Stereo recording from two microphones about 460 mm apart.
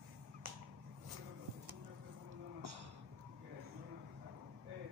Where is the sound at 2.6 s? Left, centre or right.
Right.